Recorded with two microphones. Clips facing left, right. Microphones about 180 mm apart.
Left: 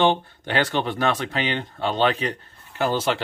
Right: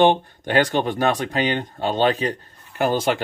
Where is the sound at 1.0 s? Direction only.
40° right (ahead or behind).